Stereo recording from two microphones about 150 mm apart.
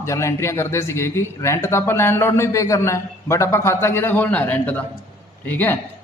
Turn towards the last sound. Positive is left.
turn(degrees=10)  # may be behind; listen again after turning